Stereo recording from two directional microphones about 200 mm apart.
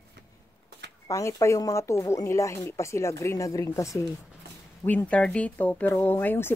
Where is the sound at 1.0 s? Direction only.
15° left (ahead or behind).